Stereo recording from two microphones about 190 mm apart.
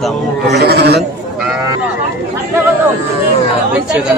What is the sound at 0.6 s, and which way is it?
Speech, 60° right (ahead or behind).